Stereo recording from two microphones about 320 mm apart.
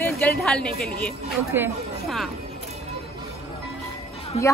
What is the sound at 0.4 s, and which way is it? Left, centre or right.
Speech, centre.